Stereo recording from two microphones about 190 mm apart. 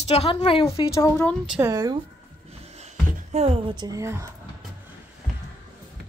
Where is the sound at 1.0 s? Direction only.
15° left (ahead or behind).